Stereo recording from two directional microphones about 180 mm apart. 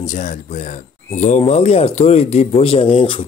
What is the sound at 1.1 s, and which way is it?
Speech, 40° left (ahead or behind).